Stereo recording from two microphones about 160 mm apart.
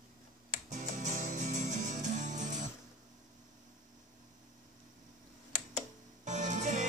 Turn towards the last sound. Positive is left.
turn(degrees=-50)  # may be behind; listen again after turning